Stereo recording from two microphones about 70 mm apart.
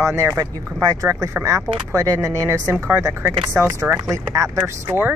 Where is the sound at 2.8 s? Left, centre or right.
Right.